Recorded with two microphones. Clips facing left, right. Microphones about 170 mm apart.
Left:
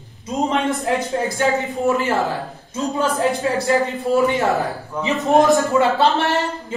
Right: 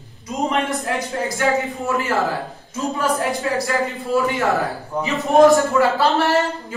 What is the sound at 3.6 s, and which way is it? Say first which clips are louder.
Speech: left 4 dB; 20° left (ahead or behind).